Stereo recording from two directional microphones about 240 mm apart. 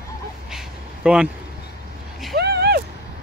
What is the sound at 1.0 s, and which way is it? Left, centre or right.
Speech, centre.